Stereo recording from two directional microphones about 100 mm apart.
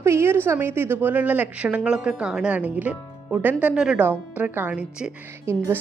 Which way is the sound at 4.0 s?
20° right (ahead or behind).